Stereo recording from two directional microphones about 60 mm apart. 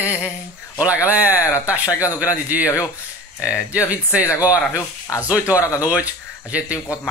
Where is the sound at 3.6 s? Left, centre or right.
Right.